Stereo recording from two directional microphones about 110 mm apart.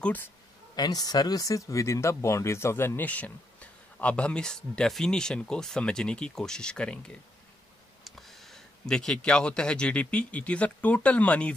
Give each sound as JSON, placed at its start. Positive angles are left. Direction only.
{"t": 0.0, "sound": "speech", "side_deg": 15}
{"t": 0.7, "sound": "speech", "side_deg": 35}